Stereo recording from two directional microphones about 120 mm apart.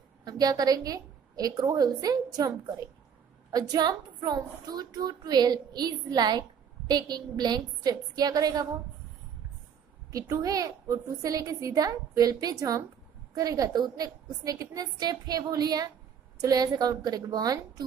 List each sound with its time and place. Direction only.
0.2 s a woman's voice: 35° right (ahead or behind)
10.1 s a woman's voice: 30° right (ahead or behind)